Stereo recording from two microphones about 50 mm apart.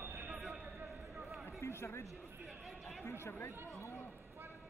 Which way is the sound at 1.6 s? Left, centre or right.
Left.